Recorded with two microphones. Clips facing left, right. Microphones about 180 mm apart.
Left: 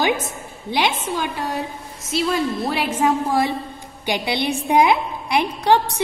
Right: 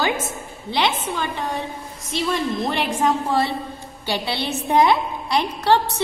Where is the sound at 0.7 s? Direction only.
10° left (ahead or behind).